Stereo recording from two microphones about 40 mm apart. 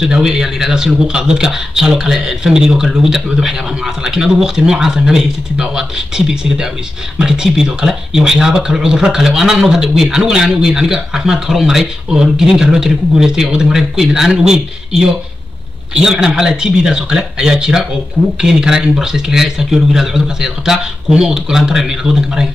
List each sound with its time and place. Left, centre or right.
0.0 s speech: centre